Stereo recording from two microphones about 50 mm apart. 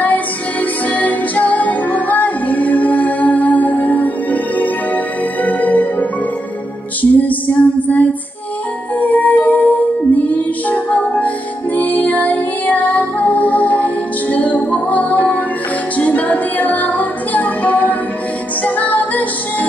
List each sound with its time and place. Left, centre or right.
0.8 s music: left